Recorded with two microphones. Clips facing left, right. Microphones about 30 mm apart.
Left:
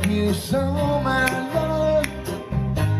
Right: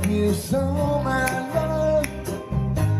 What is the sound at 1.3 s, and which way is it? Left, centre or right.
Music, left.